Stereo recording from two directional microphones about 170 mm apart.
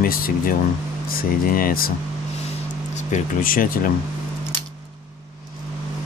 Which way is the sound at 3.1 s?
55° left (ahead or behind).